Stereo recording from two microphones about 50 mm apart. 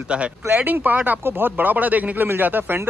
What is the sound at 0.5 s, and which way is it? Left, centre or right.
Speech, right.